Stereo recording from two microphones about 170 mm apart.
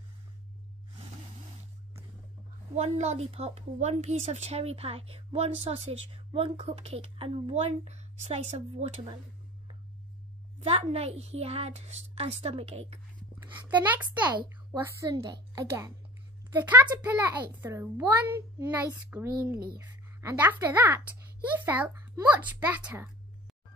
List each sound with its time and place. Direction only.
2.7 s a woman's voice: 40° right (ahead or behind)
10.6 s a woman's voice: 35° right (ahead or behind)
13.7 s a child's voice: 10° right (ahead or behind)